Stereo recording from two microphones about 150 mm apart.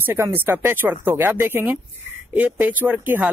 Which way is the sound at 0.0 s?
15° right (ahead or behind).